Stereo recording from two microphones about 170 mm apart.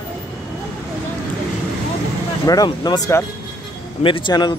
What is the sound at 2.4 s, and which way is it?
Speech, 20° left (ahead or behind).